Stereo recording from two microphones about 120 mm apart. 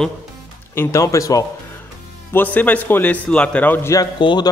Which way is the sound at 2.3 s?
15° left (ahead or behind).